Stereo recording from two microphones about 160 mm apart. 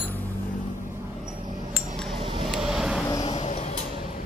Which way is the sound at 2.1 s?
30° right (ahead or behind).